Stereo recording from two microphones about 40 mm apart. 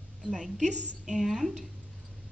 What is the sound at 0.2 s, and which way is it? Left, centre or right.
A woman's voice, centre.